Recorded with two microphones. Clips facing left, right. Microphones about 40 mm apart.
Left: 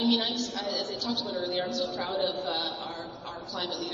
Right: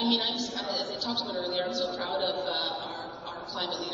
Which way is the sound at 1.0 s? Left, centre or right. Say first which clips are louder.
Left 1 dB; right.